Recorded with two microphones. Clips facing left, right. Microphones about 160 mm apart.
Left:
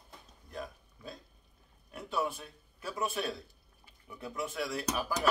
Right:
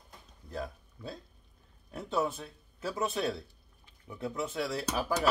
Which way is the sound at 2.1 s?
30° right (ahead or behind).